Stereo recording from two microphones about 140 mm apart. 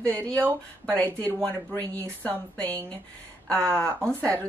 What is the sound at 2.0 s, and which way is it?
Speech, 10° left (ahead or behind).